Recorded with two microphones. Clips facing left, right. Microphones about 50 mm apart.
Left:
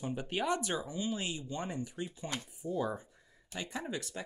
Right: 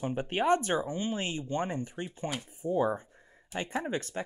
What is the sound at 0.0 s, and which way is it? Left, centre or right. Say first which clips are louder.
Speech: right 6 dB; right.